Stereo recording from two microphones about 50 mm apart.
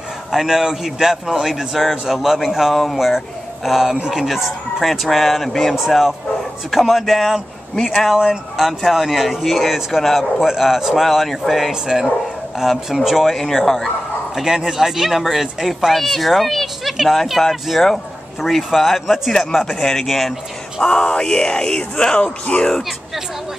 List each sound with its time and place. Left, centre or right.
0.3 s a man's voice: centre
11.7 s a man's voice: centre
14.3 s a man's voice: centre
20.9 s speech: centre
22.8 s speech: centre